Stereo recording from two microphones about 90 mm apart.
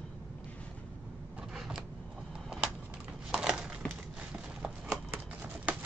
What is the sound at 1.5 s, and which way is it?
Power windows, 5° right (ahead or behind).